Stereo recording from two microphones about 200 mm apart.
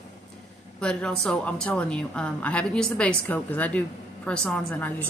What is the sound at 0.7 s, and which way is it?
A woman's voice, 5° left (ahead or behind).